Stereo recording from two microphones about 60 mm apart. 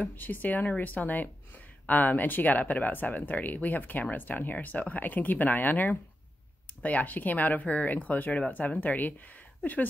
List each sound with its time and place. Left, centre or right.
0.1 s speech: left